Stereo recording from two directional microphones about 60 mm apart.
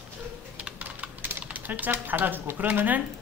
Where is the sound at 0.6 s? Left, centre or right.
Right.